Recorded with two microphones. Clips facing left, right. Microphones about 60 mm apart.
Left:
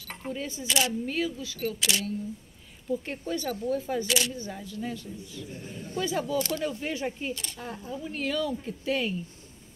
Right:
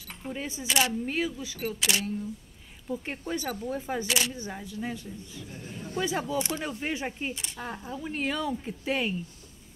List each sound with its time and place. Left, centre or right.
0.3 s speech: right